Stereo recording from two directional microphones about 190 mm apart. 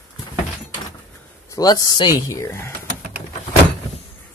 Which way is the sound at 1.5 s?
20° left (ahead or behind).